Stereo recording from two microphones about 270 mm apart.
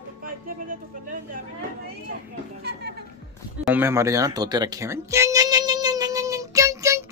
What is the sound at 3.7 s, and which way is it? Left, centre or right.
Music, centre.